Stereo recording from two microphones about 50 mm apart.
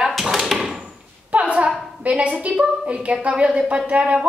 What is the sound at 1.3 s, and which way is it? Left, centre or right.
A woman's voice, right.